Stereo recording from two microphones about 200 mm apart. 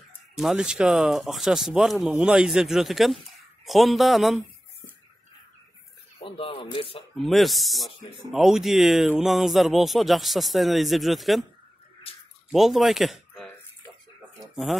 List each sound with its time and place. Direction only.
0.4 s speech: 5° right (ahead or behind)
6.1 s speech: 25° left (ahead or behind)
7.0 s speech: centre (ahead or behind)
12.1 s a sound: 30° left (ahead or behind)
12.4 s speech: centre (ahead or behind)
14.5 s speech: centre (ahead or behind)